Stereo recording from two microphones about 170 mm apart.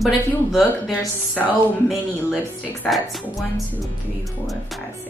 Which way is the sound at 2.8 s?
Centre (ahead or behind).